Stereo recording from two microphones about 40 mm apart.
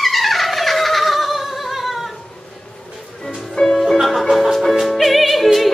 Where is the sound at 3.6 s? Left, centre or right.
Left.